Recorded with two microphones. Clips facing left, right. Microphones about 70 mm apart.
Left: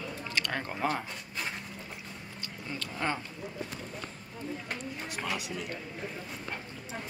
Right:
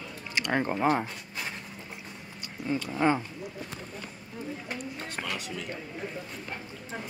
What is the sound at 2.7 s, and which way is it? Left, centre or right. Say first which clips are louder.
Speech: right 8 dB; centre.